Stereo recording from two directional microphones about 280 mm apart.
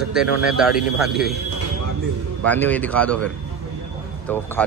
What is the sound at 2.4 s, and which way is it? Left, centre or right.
Speech, centre.